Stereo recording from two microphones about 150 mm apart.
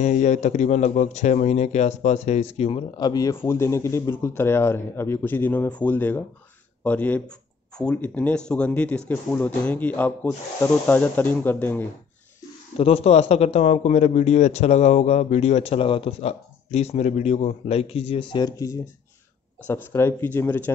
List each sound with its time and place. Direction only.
0.0 s a man's voice: 50° left (ahead or behind)
3.0 s speech: 25° left (ahead or behind)
12.7 s a man's voice: 40° left (ahead or behind); by 20.7 s 15° left (ahead or behind)